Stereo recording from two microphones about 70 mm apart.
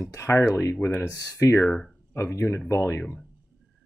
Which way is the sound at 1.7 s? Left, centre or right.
Centre.